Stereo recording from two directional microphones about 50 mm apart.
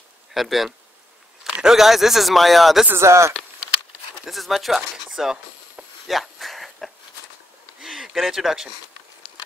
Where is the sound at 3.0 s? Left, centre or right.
Right.